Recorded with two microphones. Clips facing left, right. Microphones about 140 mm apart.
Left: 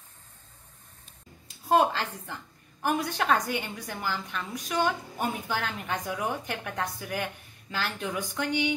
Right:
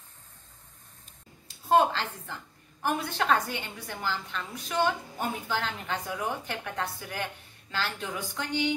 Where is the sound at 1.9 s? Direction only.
10° left (ahead or behind).